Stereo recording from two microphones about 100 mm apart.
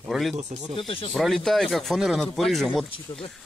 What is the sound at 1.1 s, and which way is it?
Speech, centre (ahead or behind).